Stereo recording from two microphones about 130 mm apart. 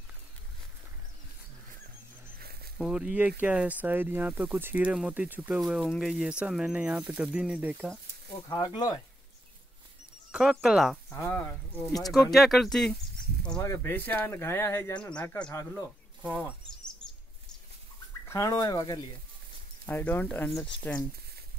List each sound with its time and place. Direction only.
2.8 s speech: 10° right (ahead or behind)
8.5 s speech: 30° left (ahead or behind)
10.3 s speech: 5° right (ahead or behind)
11.1 s speech: 20° left (ahead or behind)
12.0 s speech: centre (ahead or behind)
13.6 s speech: 20° left (ahead or behind)
15.0 s speech: 10° left (ahead or behind)
18.3 s speech: 25° left (ahead or behind)
19.9 s speech: 15° left (ahead or behind)